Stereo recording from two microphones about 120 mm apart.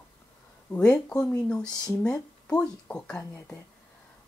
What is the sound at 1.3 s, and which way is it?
Speech, 10° left (ahead or behind).